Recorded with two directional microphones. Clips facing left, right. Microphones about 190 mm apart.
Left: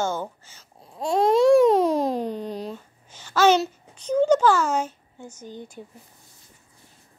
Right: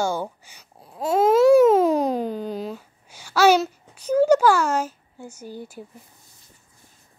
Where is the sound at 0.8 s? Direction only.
5° right (ahead or behind).